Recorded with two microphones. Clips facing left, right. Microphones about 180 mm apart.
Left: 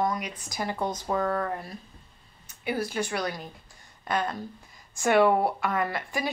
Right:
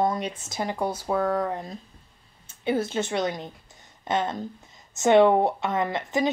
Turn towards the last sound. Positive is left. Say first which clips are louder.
# right 4 dB
turn(degrees=-20)  # may be behind; listen again after turning